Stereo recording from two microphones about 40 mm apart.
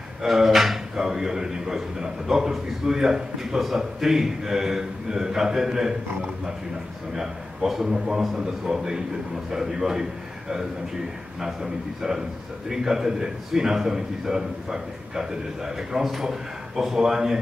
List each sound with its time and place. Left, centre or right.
0.3 s speech: centre
7.2 s speech: centre
11.4 s speech: centre